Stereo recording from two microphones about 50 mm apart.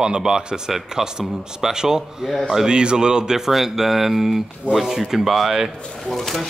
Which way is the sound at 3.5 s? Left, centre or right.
Centre.